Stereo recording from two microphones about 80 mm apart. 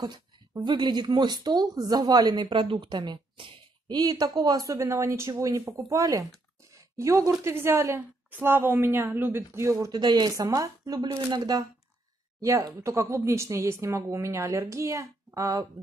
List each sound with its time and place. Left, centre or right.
0.0 s a woman's voice: right
9.8 s speech: right
12.4 s speech: right